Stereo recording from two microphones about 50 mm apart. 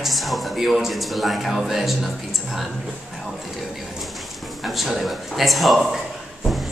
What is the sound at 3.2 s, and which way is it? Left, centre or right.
Speech, centre.